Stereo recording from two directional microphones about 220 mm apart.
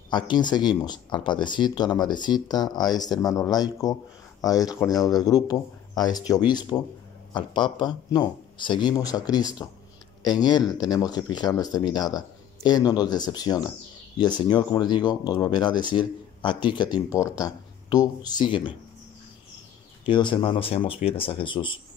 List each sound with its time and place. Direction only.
0.1 s speech: 20° left (ahead or behind)
20.1 s speech: 20° left (ahead or behind)